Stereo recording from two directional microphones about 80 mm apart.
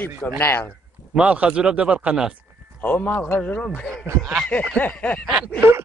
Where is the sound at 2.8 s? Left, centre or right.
Left.